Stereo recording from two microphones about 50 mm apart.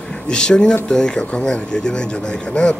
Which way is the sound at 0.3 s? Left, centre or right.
Centre.